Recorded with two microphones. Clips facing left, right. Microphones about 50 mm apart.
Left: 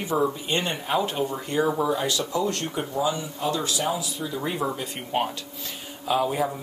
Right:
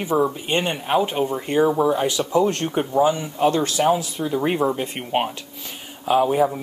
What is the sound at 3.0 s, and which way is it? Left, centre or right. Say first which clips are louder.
Speech: right 8 dB; right.